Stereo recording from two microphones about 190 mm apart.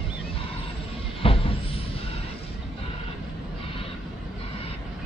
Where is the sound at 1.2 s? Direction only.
30° left (ahead or behind).